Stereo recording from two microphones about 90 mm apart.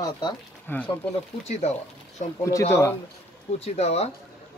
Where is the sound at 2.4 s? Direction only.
35° left (ahead or behind).